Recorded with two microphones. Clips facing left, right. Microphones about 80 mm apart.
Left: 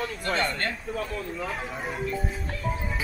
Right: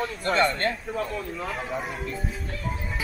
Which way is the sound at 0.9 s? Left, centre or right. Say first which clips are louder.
Right 2 dB; centre.